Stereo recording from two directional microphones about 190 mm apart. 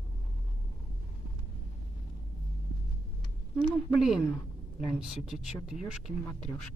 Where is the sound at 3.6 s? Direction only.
Centre (ahead or behind).